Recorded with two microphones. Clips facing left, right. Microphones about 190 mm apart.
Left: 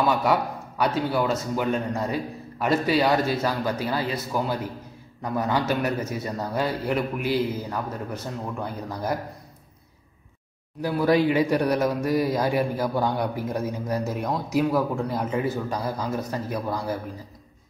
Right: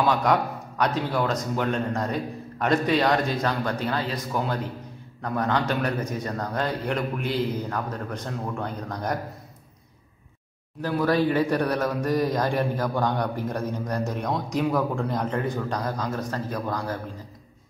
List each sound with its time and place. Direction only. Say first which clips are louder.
0.0 s a man's voice: even; 5° left (ahead or behind)
10.8 s a man's voice: left 2 dB; 10° left (ahead or behind)